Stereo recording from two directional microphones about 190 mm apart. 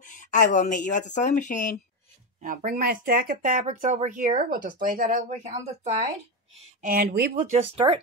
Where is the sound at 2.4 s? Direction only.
45° right (ahead or behind).